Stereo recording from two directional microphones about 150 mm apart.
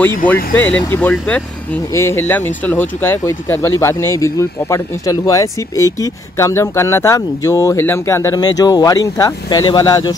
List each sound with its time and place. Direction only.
0.6 s speech: 15° left (ahead or behind)